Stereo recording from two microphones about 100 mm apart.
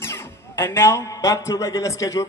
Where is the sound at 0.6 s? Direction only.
30° left (ahead or behind).